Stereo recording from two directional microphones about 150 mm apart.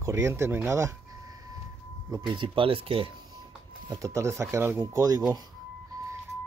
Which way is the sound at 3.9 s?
20° right (ahead or behind).